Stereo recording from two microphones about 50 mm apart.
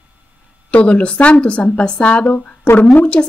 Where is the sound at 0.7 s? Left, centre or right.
Left.